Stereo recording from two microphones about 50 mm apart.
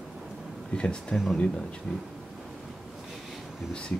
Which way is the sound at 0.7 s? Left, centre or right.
Centre.